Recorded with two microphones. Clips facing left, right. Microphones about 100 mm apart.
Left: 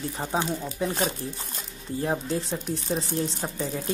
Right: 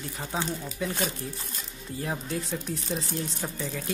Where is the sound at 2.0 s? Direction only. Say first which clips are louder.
Left 5 dB; 30° left (ahead or behind).